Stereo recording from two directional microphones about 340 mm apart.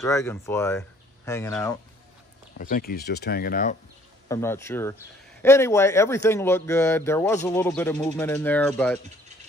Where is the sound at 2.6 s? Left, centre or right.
Left.